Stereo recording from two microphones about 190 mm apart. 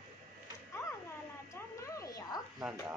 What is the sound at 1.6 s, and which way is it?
Cat, 15° left (ahead or behind).